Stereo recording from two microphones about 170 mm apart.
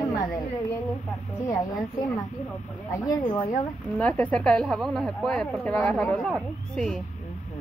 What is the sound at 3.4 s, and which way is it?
Speech, 10° left (ahead or behind).